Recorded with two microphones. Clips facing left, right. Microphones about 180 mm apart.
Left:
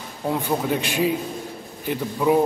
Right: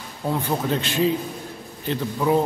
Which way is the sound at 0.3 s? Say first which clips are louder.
Left 1 dB; 15° left (ahead or behind).